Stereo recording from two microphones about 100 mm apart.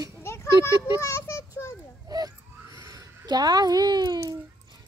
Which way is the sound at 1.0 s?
30° left (ahead or behind).